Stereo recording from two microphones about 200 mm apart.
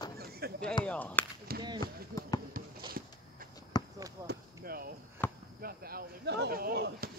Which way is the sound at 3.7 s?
20° left (ahead or behind).